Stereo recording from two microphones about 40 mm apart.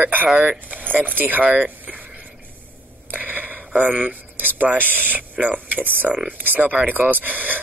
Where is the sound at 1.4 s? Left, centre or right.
Right.